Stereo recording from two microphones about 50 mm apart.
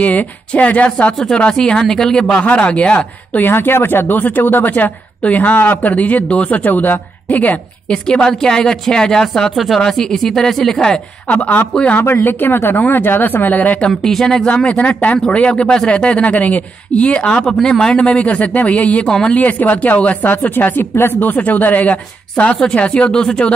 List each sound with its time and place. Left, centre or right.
0.0 s speech: left
1.5 s speech: centre
3.3 s speech: left
7.9 s speech: centre
11.2 s speech: left
12.0 s speech: left
13.7 s speech: centre
14.5 s speech: left
19.0 s speech: centre
19.3 s speech: left
22.4 s speech: centre